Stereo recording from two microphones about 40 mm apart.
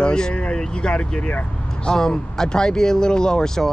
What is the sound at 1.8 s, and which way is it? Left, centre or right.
Speech, centre.